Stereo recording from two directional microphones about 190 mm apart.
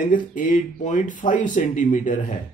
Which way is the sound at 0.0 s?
45° left (ahead or behind).